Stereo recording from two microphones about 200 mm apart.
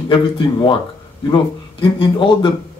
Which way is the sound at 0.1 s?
25° left (ahead or behind).